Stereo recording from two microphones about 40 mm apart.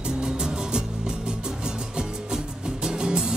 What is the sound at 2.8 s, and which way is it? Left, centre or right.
Music, centre.